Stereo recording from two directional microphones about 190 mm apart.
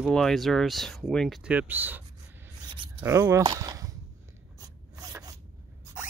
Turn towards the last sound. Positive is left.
turn(degrees=-20)  # may be behind; listen again after turning